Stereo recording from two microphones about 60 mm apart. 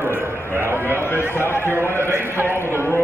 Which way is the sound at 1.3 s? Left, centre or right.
Left.